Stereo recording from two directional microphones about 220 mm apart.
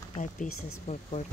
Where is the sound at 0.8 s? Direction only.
30° left (ahead or behind).